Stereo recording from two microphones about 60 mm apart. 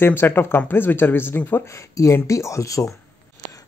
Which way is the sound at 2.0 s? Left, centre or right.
Left.